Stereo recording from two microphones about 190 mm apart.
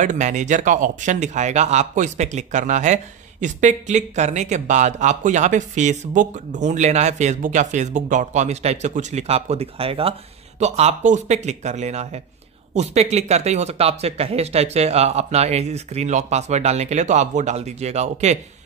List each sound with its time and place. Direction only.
0.0 s speech: 40° right (ahead or behind)